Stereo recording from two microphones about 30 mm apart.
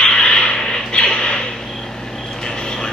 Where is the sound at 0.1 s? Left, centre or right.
Left.